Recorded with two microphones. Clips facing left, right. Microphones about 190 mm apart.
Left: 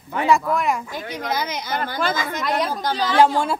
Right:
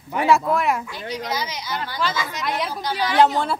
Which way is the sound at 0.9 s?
55° left (ahead or behind).